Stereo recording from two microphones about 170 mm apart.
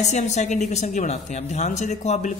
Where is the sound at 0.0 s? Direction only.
45° left (ahead or behind).